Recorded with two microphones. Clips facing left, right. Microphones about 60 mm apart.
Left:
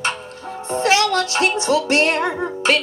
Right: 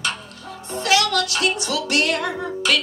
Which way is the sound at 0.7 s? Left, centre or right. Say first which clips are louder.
Left 3 dB; left.